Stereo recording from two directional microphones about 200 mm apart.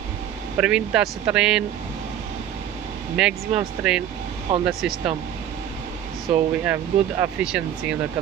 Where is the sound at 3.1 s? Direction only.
5° right (ahead or behind).